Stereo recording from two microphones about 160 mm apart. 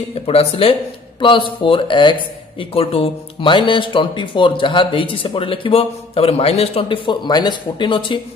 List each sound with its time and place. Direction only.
0.1 s speech: 40° left (ahead or behind)